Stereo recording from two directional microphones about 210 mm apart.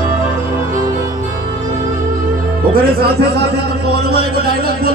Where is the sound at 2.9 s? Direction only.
50° right (ahead or behind).